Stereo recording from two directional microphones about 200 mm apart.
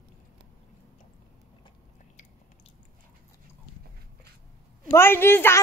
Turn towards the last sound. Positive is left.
turn(degrees=10)  # may be behind; listen again after turning